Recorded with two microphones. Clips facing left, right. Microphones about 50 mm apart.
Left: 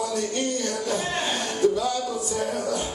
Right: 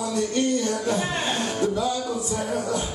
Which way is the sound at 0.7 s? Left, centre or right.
Right.